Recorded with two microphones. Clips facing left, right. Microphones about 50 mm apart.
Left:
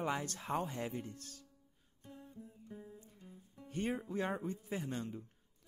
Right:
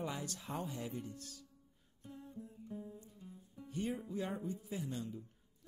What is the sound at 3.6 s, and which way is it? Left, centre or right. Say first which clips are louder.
Speech: left 2 dB; left.